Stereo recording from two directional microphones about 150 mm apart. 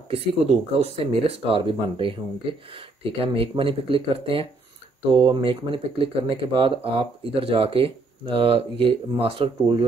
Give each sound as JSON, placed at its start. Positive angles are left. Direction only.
{"t": 0.1, "sound": "speech", "side_deg": -40}